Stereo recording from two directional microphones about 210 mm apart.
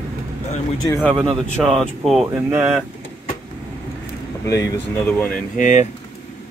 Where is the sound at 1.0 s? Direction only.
Centre (ahead or behind).